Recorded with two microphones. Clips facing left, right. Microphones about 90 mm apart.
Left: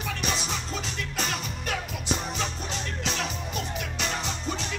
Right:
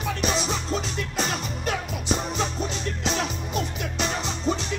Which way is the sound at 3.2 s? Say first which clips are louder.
Right 4 dB; 30° right (ahead or behind).